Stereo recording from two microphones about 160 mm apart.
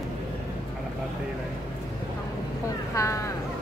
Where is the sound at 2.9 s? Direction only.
20° left (ahead or behind).